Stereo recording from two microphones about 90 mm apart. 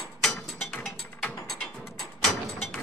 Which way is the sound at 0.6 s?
10° left (ahead or behind).